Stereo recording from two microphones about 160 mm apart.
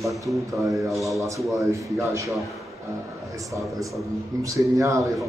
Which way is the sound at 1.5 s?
20° right (ahead or behind).